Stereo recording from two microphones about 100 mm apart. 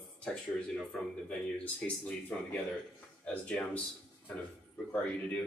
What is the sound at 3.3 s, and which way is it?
Speech, 10° left (ahead or behind).